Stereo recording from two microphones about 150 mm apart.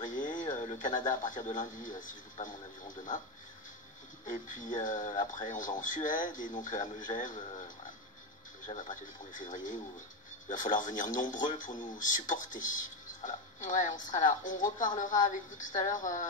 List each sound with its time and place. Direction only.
0.1 s radio: 60° left (ahead or behind)
0.8 s speech: 25° left (ahead or behind)
1.8 s speech: 60° left (ahead or behind)
4.3 s speech: 60° left (ahead or behind)
8.7 s speech: 60° left (ahead or behind)